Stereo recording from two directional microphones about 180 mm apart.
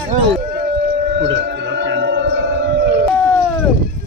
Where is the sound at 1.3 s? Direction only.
90° right; by 2.3 s 70° right (ahead or behind).